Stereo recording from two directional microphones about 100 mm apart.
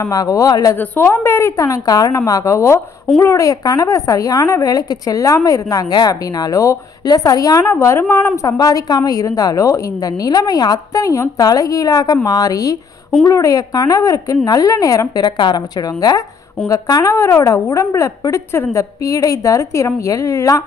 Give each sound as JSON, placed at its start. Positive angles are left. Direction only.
{"t": 0.0, "sound": "speech", "side_deg": 35}
{"t": 0.7, "sound": "a woman's voice", "side_deg": 20}
{"t": 7.7, "sound": "a woman's voice", "side_deg": 25}
{"t": 8.5, "sound": "speech", "side_deg": 40}